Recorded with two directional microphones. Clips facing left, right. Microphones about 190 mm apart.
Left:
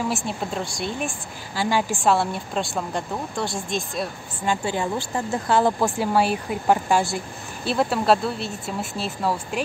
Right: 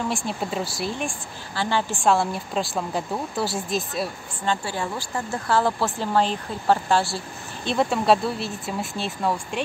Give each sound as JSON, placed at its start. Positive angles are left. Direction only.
{"t": 0.0, "sound": "a woman's voice", "side_deg": 5}
{"t": 4.5, "sound": "speech", "side_deg": 20}
{"t": 7.6, "sound": "a woman's voice", "side_deg": 0}